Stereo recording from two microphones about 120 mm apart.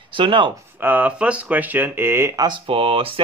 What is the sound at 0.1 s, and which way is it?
Speech, 45° right (ahead or behind).